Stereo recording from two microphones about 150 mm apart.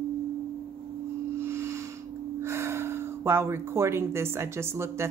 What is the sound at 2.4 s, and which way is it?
Speech, 15° right (ahead or behind).